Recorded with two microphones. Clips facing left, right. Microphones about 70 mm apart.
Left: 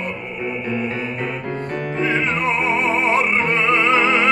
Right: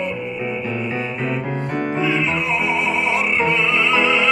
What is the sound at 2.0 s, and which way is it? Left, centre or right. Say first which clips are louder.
Music: left 2 dB; left.